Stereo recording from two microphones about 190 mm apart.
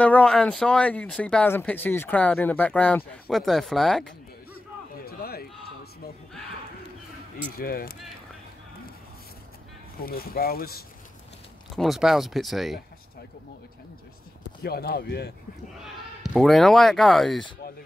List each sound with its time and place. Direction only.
0.0 s speech: 5° left (ahead or behind)
5.0 s run: 55° left (ahead or behind)
7.5 s speech: 50° left (ahead or behind)
10.0 s speech: 50° left (ahead or behind)
11.7 s speech: centre (ahead or behind)
14.6 s speech: 55° left (ahead or behind)
15.8 s speech: centre (ahead or behind)